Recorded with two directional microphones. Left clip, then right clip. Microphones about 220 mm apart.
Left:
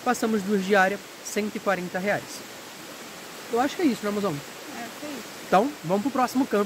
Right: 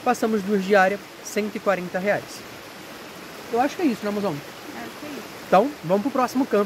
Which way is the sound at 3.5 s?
Centre (ahead or behind).